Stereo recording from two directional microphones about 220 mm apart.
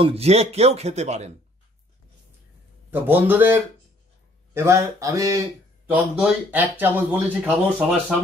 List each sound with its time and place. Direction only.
0.0 s speech: 30° right (ahead or behind)
2.9 s speech: 10° right (ahead or behind)